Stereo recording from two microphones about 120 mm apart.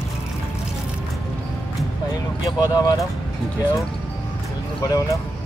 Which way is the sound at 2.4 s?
35° left (ahead or behind).